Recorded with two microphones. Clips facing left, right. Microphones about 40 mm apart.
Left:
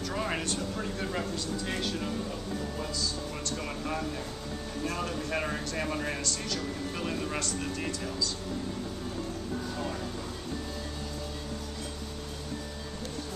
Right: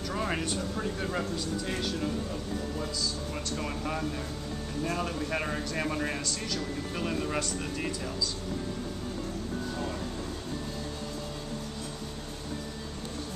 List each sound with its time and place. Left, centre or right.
0.1 s a sound: centre
0.7 s speech: centre
3.5 s speech: centre